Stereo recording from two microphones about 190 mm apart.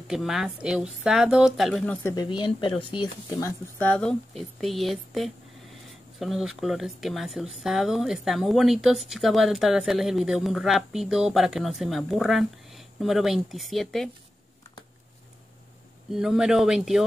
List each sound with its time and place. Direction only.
0.1 s speech: centre (ahead or behind)
2.0 s speech: 20° left (ahead or behind)
3.3 s speech: 15° left (ahead or behind)
16.1 s speech: centre (ahead or behind)